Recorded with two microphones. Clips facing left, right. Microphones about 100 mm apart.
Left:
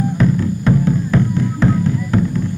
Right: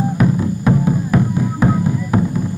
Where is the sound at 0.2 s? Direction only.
15° right (ahead or behind).